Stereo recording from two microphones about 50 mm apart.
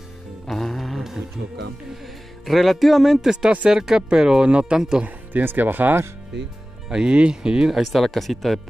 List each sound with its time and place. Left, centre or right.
0.5 s music: centre
2.4 s speech: centre
5.0 s speech: right
6.9 s speech: centre
7.8 s speech: centre